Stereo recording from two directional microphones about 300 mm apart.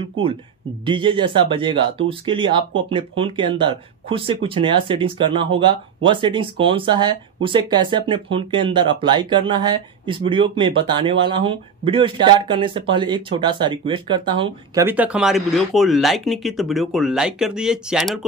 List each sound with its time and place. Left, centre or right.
0.8 s speech: centre